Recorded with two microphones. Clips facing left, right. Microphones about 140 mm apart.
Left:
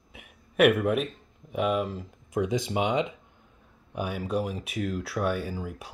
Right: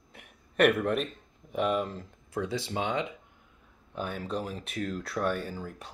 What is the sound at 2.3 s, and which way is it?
Speech, 15° left (ahead or behind).